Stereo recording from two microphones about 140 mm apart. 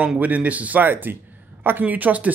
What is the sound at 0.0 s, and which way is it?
Speech, 10° right (ahead or behind).